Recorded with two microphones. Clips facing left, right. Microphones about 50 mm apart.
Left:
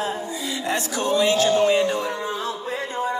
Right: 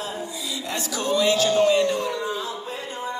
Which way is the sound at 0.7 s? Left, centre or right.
Left.